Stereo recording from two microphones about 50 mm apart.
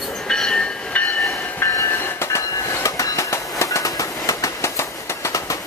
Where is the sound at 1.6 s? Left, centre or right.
Left.